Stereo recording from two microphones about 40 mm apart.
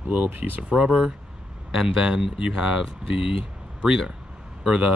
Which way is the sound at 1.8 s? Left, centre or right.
Centre.